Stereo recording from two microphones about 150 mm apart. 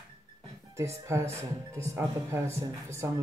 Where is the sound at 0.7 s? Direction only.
20° right (ahead or behind).